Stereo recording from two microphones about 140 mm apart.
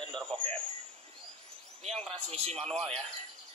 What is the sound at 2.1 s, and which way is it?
Speech, 50° right (ahead or behind).